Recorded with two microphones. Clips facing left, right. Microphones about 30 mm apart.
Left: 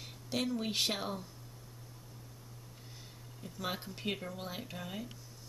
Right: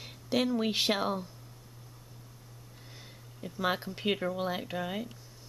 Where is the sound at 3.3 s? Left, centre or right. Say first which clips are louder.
Right 8 dB; right.